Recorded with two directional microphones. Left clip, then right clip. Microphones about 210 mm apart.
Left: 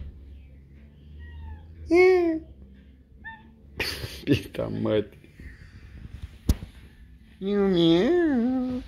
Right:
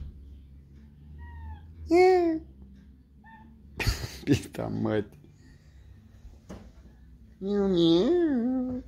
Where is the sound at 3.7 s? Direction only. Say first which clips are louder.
Left 3 dB; 20° right (ahead or behind).